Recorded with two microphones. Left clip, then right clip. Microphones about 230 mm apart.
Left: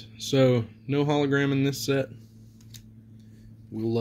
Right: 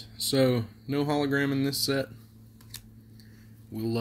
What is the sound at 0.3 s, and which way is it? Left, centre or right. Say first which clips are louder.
Speech: left 3 dB; centre.